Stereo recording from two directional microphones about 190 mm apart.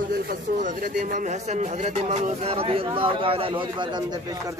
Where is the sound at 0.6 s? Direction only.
40° right (ahead or behind).